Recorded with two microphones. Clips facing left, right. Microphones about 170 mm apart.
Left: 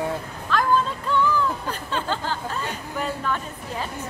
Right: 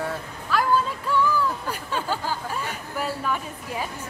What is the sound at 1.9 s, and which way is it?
Speech, 10° right (ahead or behind).